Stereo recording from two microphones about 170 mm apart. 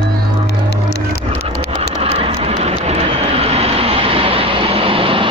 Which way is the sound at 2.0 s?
35° right (ahead or behind).